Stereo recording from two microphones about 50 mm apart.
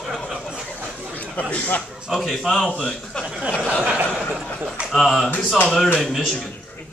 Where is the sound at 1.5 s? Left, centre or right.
Left.